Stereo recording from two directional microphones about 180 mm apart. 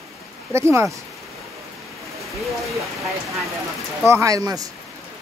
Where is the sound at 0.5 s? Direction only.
15° right (ahead or behind).